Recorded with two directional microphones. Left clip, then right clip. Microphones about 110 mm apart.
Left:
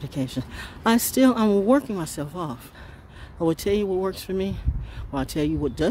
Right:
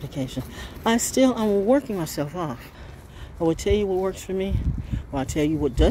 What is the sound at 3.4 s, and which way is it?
Speech, 45° left (ahead or behind).